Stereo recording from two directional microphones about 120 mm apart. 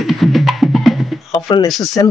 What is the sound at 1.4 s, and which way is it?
Speech, 30° left (ahead or behind).